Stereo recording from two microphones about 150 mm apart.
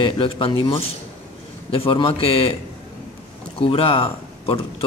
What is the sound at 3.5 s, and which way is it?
Speech, 40° left (ahead or behind).